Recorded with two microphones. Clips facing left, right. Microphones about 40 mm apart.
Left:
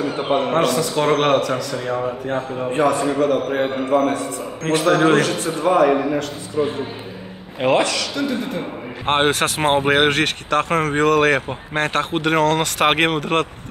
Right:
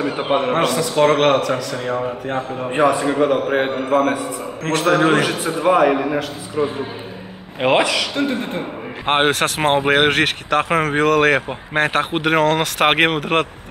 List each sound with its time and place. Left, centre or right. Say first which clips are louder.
0.0 s a man's voice: right 1 dB; right
2.7 s a man's voice: right 2 dB; right
3.9 s a man's voice: right 1 dB; centre
4.6 s a man's voice: even; centre
7.8 s speech: right 2 dB; centre
8.2 s speech: right 2 dB; right
9.0 s speech: right 1 dB; centre